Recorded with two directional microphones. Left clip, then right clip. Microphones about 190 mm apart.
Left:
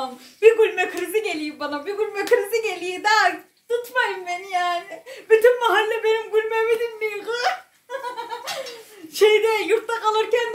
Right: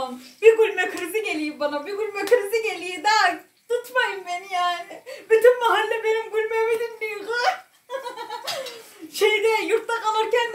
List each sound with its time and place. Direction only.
0.4 s a woman's voice: 25° left (ahead or behind)
5.4 s a sound: 20° left (ahead or behind)
9.1 s speech: 25° left (ahead or behind)